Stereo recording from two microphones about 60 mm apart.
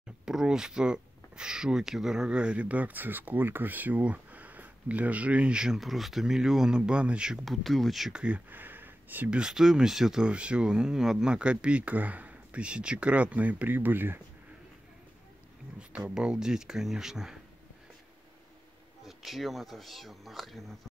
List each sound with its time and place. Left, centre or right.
0.2 s speech: centre
5.8 s speech: centre
7.4 s speech: centre
8.1 s speech: centre
8.5 s a sound: right
9.3 s speech: centre; by 14.2 s right
15.9 s speech: centre
19.0 s speech: centre